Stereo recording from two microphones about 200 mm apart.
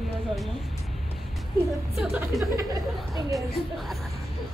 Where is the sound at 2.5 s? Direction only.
20° right (ahead or behind).